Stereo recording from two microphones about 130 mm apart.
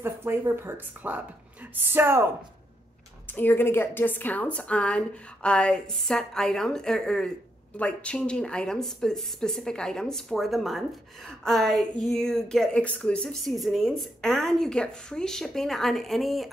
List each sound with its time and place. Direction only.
0.0 s a woman's voice: 20° right (ahead or behind)
3.3 s a woman's voice: 15° left (ahead or behind)